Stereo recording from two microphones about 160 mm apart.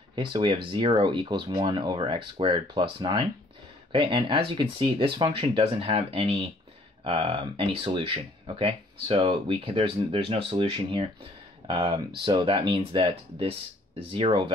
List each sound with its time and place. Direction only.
0.1 s speech: 30° right (ahead or behind)